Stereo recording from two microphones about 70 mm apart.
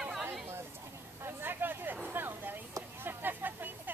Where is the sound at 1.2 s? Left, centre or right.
Right.